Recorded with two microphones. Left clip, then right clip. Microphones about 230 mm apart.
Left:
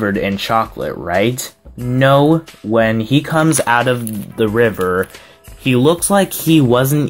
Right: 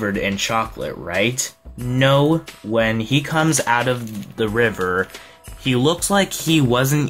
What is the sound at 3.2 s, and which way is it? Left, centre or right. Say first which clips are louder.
Speech: left 4 dB; centre.